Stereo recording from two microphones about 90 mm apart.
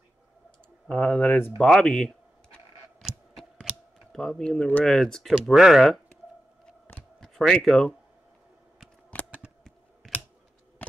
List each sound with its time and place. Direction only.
0.8 s speech: 15° left (ahead or behind)
1.6 s camera: 5° left (ahead or behind)
4.1 s speech: 5° left (ahead or behind)
7.2 s speech: 5° left (ahead or behind)